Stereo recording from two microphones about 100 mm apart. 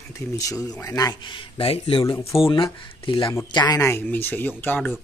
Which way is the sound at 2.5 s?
55° left (ahead or behind).